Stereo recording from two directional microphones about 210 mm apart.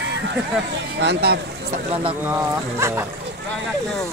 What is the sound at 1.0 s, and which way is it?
Speech, 50° right (ahead or behind).